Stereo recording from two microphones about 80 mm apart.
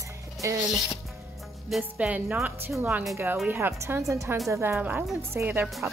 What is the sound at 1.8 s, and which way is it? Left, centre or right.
Speech, centre.